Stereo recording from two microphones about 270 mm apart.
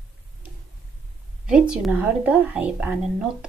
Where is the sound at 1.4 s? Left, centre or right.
Centre.